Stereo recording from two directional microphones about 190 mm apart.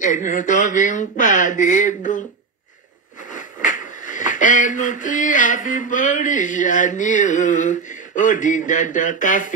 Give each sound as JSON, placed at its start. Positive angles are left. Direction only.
{"t": 0.0, "sound": "speech", "side_deg": 40}
{"t": 3.3, "sound": "speech", "side_deg": 45}